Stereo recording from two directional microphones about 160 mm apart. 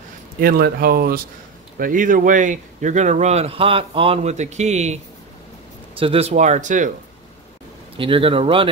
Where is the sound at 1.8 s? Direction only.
55° right (ahead or behind).